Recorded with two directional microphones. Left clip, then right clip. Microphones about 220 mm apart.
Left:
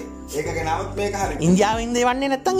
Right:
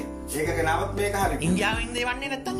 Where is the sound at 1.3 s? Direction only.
25° left (ahead or behind).